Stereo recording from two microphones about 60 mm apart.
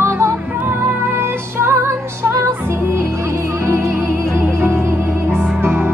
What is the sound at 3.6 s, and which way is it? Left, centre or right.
Music, right.